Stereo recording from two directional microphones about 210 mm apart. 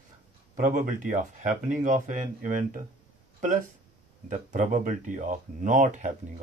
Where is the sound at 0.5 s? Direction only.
40° right (ahead or behind).